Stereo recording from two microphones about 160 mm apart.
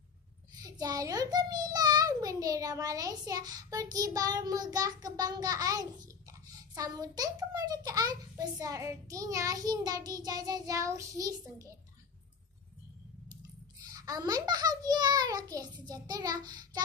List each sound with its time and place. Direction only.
0.6 s a child's voice: 25° right (ahead or behind)
13.9 s a child's voice: 25° right (ahead or behind)